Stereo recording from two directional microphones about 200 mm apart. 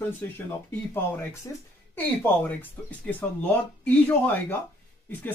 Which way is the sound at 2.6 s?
10° left (ahead or behind).